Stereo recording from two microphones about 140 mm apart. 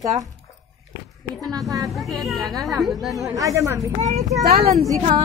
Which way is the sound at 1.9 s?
Centre (ahead or behind).